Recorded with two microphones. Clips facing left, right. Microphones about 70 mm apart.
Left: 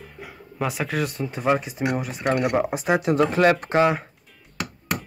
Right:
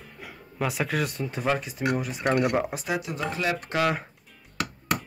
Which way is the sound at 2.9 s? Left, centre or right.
Left.